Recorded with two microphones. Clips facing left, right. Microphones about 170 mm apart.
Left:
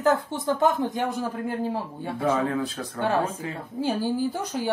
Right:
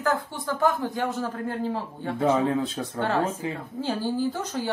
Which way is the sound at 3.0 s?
15° left (ahead or behind).